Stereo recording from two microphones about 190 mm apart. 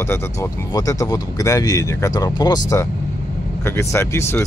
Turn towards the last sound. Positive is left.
turn(degrees=15)  # may be behind; listen again after turning